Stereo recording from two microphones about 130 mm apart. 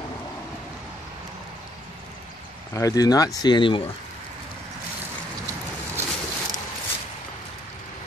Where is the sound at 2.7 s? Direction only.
25° left (ahead or behind); by 3.9 s 40° left (ahead or behind).